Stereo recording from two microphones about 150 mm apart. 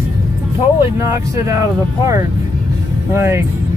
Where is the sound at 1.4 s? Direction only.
20° right (ahead or behind).